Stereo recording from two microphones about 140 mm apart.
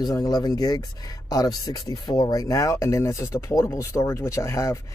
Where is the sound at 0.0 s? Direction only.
25° left (ahead or behind).